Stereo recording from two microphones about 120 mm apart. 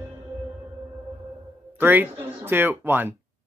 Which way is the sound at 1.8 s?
15° right (ahead or behind).